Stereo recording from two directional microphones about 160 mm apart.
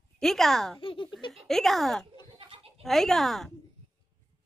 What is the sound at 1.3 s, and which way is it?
Speech, centre (ahead or behind).